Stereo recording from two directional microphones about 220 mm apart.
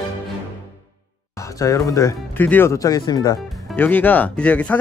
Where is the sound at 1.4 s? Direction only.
15° left (ahead or behind).